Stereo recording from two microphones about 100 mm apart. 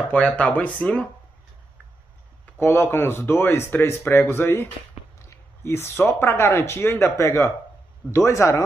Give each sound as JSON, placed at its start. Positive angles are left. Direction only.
{"t": 0.1, "sound": "speech", "side_deg": 15}
{"t": 2.6, "sound": "speech", "side_deg": 20}